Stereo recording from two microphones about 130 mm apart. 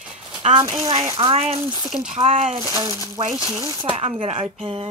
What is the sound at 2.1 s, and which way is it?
Speech, 60° right (ahead or behind).